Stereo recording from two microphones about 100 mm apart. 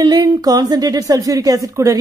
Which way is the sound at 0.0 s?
40° right (ahead or behind).